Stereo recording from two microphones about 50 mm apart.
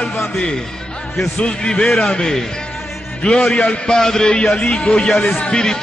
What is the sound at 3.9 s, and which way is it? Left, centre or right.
Music, centre.